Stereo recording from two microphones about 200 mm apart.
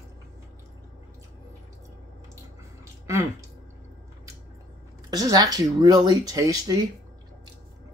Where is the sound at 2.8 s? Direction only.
15° right (ahead or behind).